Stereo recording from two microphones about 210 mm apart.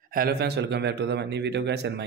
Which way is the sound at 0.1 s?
45° right (ahead or behind).